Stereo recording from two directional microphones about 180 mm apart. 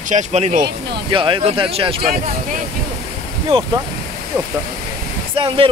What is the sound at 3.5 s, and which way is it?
Speech, 30° right (ahead or behind).